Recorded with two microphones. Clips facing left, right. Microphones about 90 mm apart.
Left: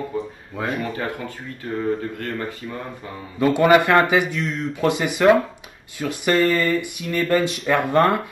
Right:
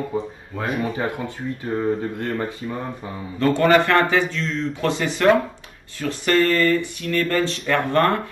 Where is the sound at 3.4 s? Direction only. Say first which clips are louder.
Left 1 dB; 10° left (ahead or behind).